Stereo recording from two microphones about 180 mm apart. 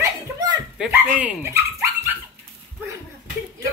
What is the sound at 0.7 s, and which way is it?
Dog, 10° right (ahead or behind).